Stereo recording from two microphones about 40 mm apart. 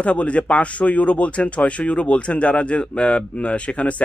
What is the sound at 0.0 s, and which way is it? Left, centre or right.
Speech, left.